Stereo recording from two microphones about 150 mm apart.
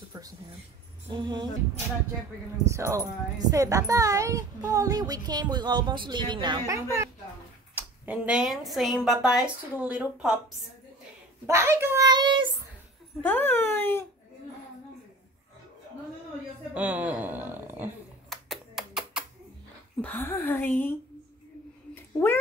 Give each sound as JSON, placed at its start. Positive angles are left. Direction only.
{"t": 0.1, "sound": "a sound", "side_deg": -30}
{"t": 1.1, "sound": "a child's voice", "side_deg": -30}
{"t": 2.6, "sound": "a child's voice", "side_deg": -20}
{"t": 7.7, "sound": "speech", "side_deg": -10}
{"t": 11.4, "sound": "a child's voice", "side_deg": -15}
{"t": 13.2, "sound": "a woman's voice", "side_deg": 10}
{"t": 16.7, "sound": "a woman's voice", "side_deg": -10}
{"t": 18.3, "sound": "a sound", "side_deg": 0}
{"t": 20.0, "sound": "a woman's voice", "side_deg": 10}